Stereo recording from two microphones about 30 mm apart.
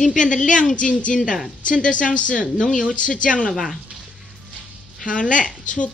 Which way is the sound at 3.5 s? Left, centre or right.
Centre.